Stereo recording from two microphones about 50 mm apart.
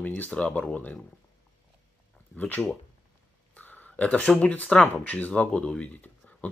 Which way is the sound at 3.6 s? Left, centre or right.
Left.